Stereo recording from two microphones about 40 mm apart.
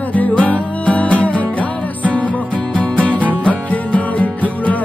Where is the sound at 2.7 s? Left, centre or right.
Left.